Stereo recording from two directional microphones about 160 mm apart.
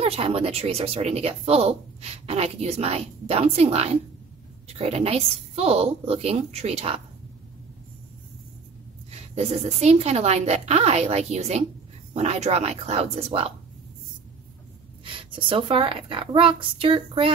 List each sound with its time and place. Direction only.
0.0 s speech: 35° right (ahead or behind)
9.1 s a woman's voice: 40° right (ahead or behind)
15.0 s speech: 35° right (ahead or behind)